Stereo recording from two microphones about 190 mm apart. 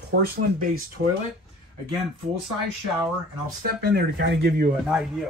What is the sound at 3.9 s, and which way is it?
Speech, 60° right (ahead or behind).